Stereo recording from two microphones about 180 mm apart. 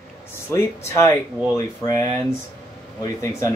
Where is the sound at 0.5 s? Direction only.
15° left (ahead or behind).